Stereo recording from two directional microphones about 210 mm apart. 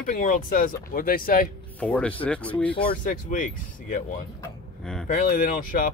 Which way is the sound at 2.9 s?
40° left (ahead or behind).